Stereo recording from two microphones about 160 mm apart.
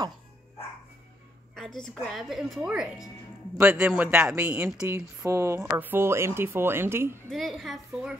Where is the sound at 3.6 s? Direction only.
15° right (ahead or behind).